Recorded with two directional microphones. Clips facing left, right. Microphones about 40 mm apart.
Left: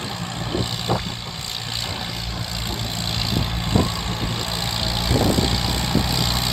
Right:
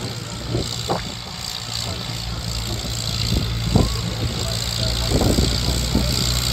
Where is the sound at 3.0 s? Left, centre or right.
Centre.